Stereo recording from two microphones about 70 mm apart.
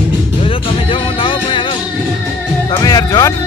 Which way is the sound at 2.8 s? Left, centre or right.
Left.